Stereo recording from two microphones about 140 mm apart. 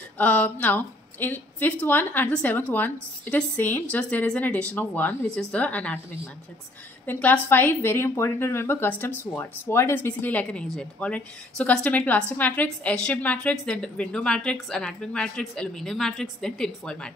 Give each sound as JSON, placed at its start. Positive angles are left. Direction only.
{"t": 0.2, "sound": "a woman's voice", "side_deg": 10}
{"t": 7.1, "sound": "a woman's voice", "side_deg": 10}